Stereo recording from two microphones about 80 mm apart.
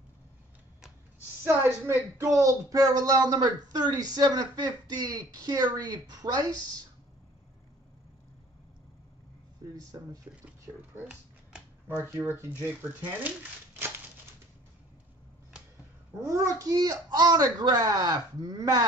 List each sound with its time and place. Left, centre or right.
1.4 s a woman's voice: right
3.3 s speech: right
9.8 s a child's voice: right
11.0 s a sound: centre
12.0 s speech: right
13.0 s a sound: right
16.2 s a child's voice: right